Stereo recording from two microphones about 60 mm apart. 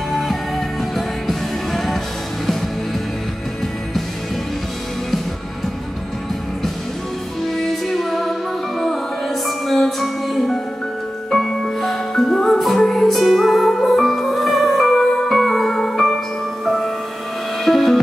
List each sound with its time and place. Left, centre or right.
0.9 s music: centre
7.5 s music: centre